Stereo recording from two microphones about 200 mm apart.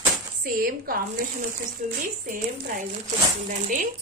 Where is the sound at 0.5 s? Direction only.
45° right (ahead or behind).